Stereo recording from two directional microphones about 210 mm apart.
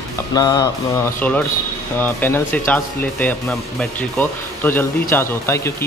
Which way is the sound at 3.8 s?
10° left (ahead or behind).